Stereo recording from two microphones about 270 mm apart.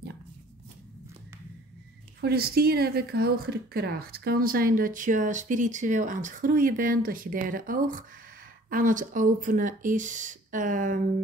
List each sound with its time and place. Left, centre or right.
2.1 s a woman's voice: right